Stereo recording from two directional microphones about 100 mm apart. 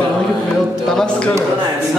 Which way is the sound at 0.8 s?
5° left (ahead or behind).